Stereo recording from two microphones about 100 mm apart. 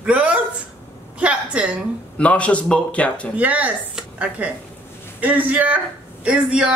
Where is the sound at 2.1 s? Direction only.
10° left (ahead or behind).